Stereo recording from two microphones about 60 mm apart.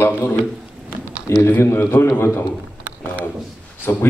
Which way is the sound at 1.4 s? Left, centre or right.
Left.